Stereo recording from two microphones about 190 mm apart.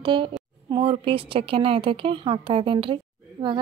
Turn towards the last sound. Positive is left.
turn(degrees=-25)  # may be behind; listen again after turning